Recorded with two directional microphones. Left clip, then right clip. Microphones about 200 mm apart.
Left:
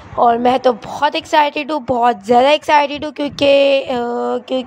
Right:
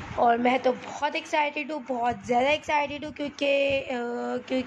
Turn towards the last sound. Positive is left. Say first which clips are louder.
# left 11 dB
turn(degrees=35)  # may be behind; listen again after turning